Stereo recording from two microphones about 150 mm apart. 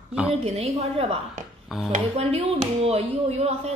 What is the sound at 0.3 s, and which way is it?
Speech, 45° right (ahead or behind).